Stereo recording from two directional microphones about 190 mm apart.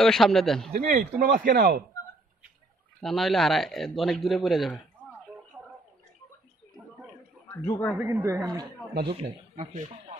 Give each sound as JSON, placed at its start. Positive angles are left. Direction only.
{"t": 0.0, "sound": "speech", "side_deg": 0}
{"t": 0.7, "sound": "speech", "side_deg": -50}
{"t": 3.0, "sound": "speech", "side_deg": 0}
{"t": 7.6, "sound": "speech", "side_deg": 10}
{"t": 8.0, "sound": "speech", "side_deg": -10}
{"t": 9.1, "sound": "speech", "side_deg": -30}